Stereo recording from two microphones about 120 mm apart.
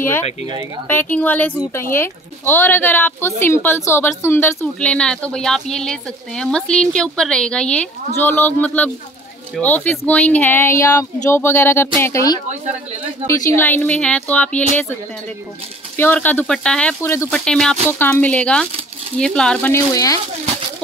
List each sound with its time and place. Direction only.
0.8 s speech: 15° left (ahead or behind)
4.7 s speech: 10° left (ahead or behind); by 12.4 s 25° left (ahead or behind)
13.6 s speech: 15° left (ahead or behind)
16.0 s speech: 15° left (ahead or behind)
17.0 s speech: 20° left (ahead or behind)
17.3 s speech: 5° left (ahead or behind)
17.8 s speech: 15° left (ahead or behind)
19.7 s speech: 30° left (ahead or behind)